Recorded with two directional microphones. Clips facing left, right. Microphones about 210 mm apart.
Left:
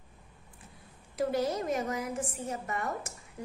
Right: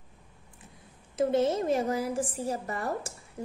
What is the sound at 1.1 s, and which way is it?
A woman's voice, 25° right (ahead or behind).